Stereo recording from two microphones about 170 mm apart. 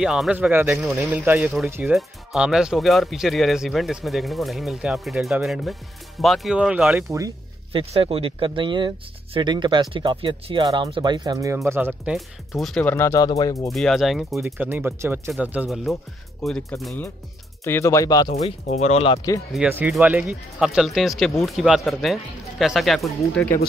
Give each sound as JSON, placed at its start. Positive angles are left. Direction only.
{"t": 0.0, "sound": "speech", "side_deg": -5}
{"t": 7.1, "sound": "speech", "side_deg": -20}
{"t": 7.7, "sound": "speech", "side_deg": -35}
{"t": 13.7, "sound": "speech", "side_deg": 0}
{"t": 14.4, "sound": "speech", "side_deg": -10}
{"t": 16.8, "sound": "speech", "side_deg": 10}
{"t": 18.7, "sound": "speech", "side_deg": 40}
{"t": 19.5, "sound": "speech", "side_deg": -10}